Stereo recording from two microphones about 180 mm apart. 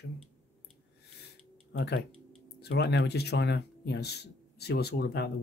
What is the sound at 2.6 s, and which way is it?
Speech, 65° left (ahead or behind).